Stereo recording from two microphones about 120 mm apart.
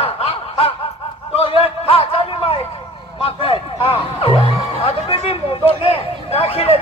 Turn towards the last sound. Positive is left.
turn(degrees=55)  # may be behind; listen again after turning